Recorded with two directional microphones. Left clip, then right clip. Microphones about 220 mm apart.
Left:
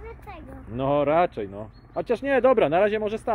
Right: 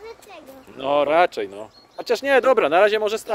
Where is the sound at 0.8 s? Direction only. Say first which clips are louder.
Right 4 dB; 10° right (ahead or behind).